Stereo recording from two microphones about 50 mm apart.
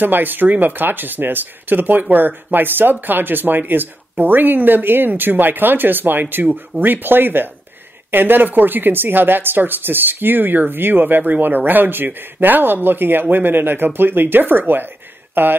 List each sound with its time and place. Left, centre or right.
0.0 s speech: right